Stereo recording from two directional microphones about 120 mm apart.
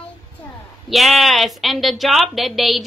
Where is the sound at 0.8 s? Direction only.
Centre (ahead or behind).